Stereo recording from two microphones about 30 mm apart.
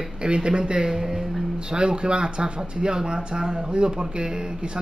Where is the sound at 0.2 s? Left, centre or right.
Right.